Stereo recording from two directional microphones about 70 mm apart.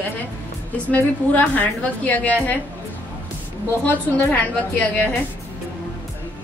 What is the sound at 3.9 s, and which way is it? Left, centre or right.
A woman's voice, left.